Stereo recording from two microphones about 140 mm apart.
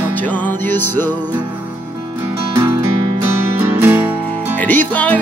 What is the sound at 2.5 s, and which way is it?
Music, 20° right (ahead or behind).